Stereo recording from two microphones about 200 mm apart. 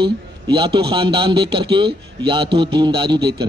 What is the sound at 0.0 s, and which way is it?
A man's voice, 25° right (ahead or behind).